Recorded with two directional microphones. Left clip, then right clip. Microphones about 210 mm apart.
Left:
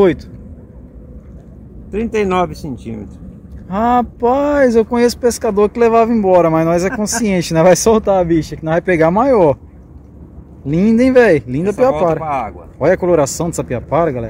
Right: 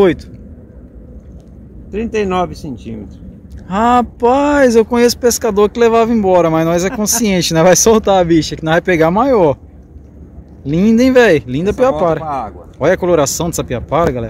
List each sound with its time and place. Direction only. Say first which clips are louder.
1.9 s speech: even; 20° left (ahead or behind)
3.6 s speech: right 2 dB; 10° right (ahead or behind)
8.0 s speech: right 2 dB; 15° right (ahead or behind)
8.9 s speech: left 1 dB; centre (ahead or behind)
10.6 s speech: right 1 dB; centre (ahead or behind)
12.3 s speech: left 1 dB; 20° left (ahead or behind)
12.7 s speech: even; centre (ahead or behind)